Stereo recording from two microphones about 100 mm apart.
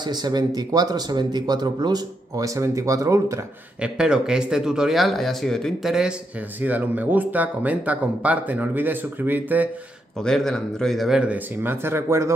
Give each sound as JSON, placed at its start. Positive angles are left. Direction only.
{"t": 0.0, "sound": "speech", "side_deg": -45}
{"t": 3.8, "sound": "speech", "side_deg": -10}
{"t": 6.6, "sound": "speech", "side_deg": -15}
{"t": 10.2, "sound": "speech", "side_deg": 5}